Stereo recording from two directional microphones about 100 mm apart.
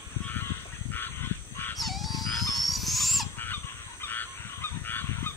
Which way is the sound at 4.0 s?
20° left (ahead or behind).